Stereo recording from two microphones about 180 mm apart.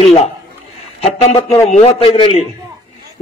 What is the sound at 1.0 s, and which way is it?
A man's voice, 35° left (ahead or behind).